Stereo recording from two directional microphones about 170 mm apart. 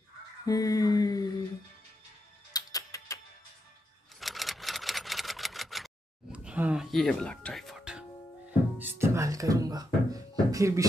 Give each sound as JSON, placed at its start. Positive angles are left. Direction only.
{"t": 0.5, "sound": "mantra", "side_deg": 20}
{"t": 2.5, "sound": "music", "side_deg": 20}
{"t": 4.2, "sound": "sewing machine", "side_deg": 0}
{"t": 6.3, "sound": "music", "side_deg": -5}
{"t": 10.1, "sound": "a sound", "side_deg": -20}